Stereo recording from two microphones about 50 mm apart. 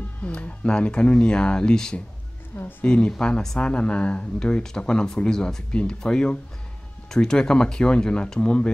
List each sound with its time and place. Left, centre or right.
0.3 s speech: left